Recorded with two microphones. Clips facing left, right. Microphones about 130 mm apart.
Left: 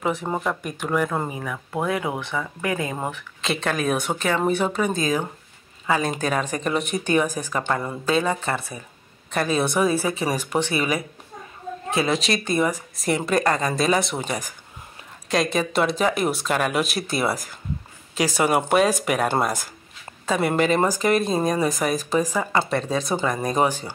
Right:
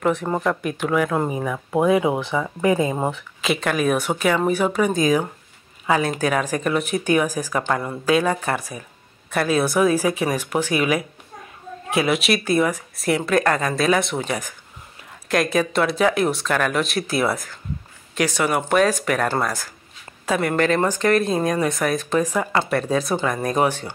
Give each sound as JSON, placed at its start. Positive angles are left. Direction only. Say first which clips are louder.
{"t": 0.0, "sound": "speech", "louder": "right 4 dB", "side_deg": 5}
{"t": 1.4, "sound": "speech", "louder": "right 6 dB", "side_deg": -20}
{"t": 3.3, "sound": "speech", "louder": "right 2 dB", "side_deg": 0}